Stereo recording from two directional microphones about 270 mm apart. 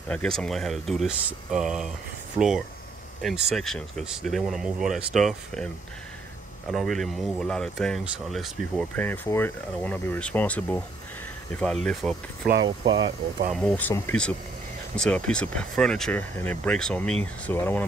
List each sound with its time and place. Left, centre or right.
0.1 s speech: centre
6.7 s speech: centre
12.4 s speech: right
12.8 s speech: centre
13.5 s speech: centre